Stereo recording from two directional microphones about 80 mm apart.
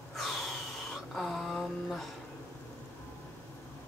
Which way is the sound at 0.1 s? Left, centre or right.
Centre.